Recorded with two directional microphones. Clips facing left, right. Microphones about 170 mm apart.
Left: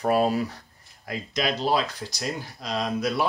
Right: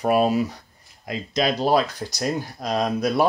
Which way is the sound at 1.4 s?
45° right (ahead or behind).